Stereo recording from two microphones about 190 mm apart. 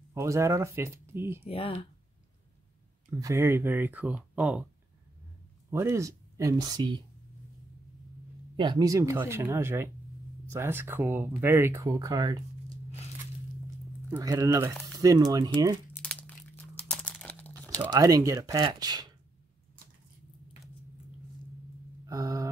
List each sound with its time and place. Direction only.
0.1 s speech: 15° right (ahead or behind)
1.4 s speech: 30° left (ahead or behind)
3.1 s speech: 15° right (ahead or behind)
5.7 s speech: 15° right (ahead or behind)
8.5 s speech: 25° right (ahead or behind)
14.1 s speech: 15° right (ahead or behind)
15.9 s crumpling: 5° left (ahead or behind)
17.9 s speech: 20° right (ahead or behind)
22.0 s a sound: 20° right (ahead or behind)